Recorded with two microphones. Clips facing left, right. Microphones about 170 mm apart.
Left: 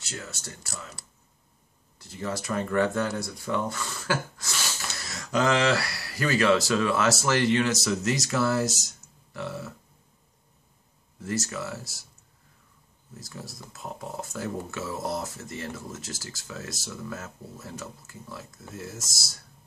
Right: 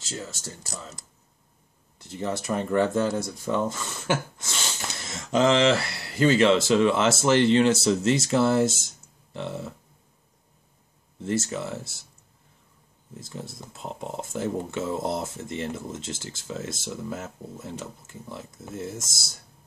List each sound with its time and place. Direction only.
2.0 s speech: 20° right (ahead or behind)
11.1 s speech: 25° right (ahead or behind)
13.2 s speech: 25° right (ahead or behind)